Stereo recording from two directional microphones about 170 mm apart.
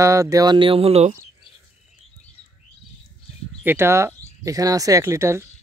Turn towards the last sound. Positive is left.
turn(degrees=-15)  # may be behind; listen again after turning